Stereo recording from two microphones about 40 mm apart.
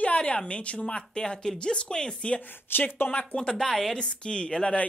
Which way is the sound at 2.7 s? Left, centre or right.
Left.